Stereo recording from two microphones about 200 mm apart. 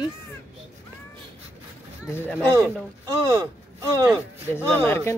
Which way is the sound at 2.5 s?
15° right (ahead or behind).